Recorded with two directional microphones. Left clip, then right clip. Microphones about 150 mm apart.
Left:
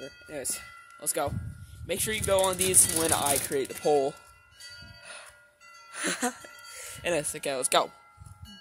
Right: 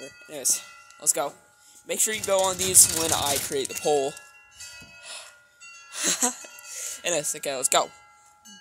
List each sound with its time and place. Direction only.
0.3 s speech: 25° left (ahead or behind)
5.0 s music: 20° left (ahead or behind)
6.7 s speech: 30° left (ahead or behind)